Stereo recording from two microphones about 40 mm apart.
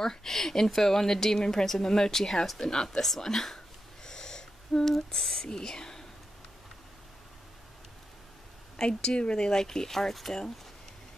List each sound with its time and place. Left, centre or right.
0.0 s a woman's voice: centre
3.1 s a sound: centre
5.1 s a woman's voice: centre
8.7 s a woman's voice: centre